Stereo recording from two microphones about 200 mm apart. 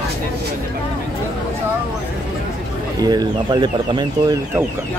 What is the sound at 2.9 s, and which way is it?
Speech, 20° right (ahead or behind).